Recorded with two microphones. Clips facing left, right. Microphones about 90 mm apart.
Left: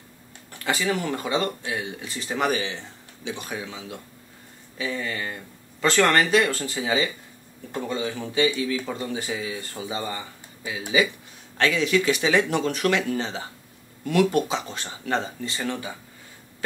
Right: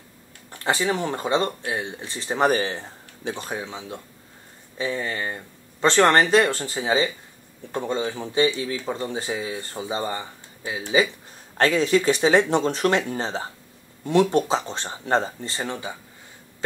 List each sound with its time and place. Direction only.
0.5 s speech: 30° right (ahead or behind)
2.5 s speech: 45° right (ahead or behind)